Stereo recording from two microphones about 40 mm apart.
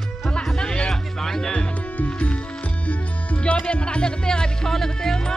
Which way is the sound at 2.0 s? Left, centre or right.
Left.